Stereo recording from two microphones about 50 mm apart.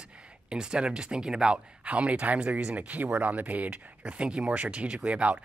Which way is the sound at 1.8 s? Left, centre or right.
Right.